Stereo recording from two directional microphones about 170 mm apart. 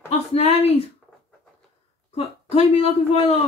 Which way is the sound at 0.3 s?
40° left (ahead or behind).